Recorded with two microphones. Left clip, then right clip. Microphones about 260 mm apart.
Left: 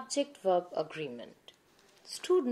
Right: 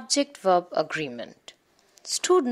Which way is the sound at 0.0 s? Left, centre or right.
Right.